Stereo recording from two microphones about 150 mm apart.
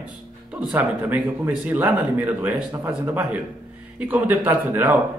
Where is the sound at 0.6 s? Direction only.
10° right (ahead or behind).